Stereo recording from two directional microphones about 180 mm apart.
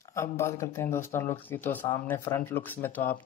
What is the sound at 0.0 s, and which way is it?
Speech, 15° left (ahead or behind).